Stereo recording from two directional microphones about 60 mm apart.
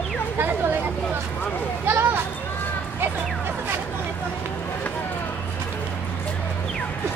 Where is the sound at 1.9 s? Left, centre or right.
Right.